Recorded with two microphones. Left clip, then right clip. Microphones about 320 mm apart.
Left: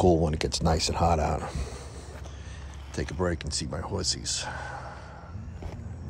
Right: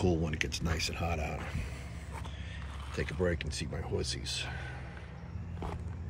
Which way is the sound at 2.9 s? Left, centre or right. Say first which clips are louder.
Left 3 dB; left.